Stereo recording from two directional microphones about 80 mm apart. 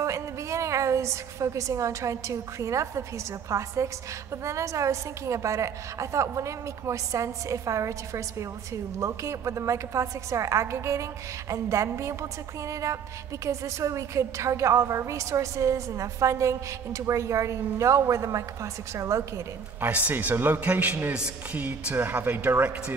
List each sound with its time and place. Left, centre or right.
0.0 s a woman's voice: right
19.8 s speech: right